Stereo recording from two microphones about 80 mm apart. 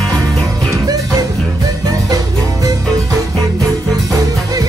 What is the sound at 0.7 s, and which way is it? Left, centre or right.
Music, right.